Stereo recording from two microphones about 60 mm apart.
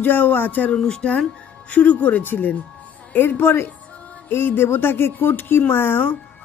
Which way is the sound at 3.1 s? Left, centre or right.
Left.